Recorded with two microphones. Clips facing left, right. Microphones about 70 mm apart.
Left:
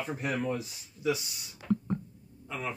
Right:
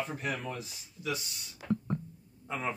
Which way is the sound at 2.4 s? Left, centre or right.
Right.